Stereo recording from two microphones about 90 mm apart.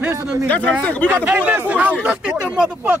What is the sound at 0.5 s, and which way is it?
Speech, 15° left (ahead or behind).